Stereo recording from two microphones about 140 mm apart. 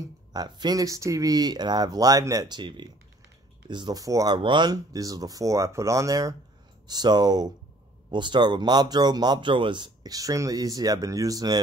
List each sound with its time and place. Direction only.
0.0 s speech: 30° right (ahead or behind)